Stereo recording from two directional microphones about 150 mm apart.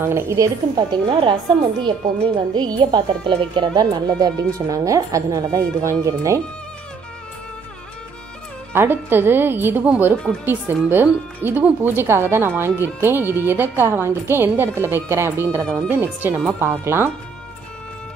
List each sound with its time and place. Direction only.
0.0 s speech: 15° right (ahead or behind)
8.7 s speech: 15° right (ahead or behind)